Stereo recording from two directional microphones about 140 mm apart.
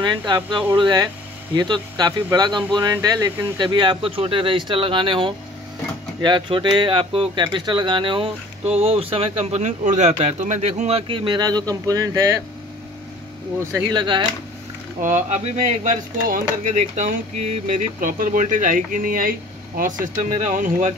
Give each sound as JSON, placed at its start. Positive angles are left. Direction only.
{"t": 0.0, "sound": "speech", "side_deg": -30}
{"t": 13.9, "sound": "speech", "side_deg": -35}
{"t": 15.0, "sound": "speech", "side_deg": -65}
{"t": 19.8, "sound": "speech", "side_deg": -65}